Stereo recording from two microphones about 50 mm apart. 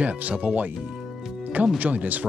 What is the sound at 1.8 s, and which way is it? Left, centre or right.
Speech, right.